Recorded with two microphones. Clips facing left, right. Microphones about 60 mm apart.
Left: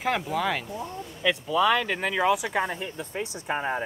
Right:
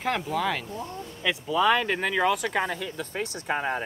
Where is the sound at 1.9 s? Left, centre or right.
Right.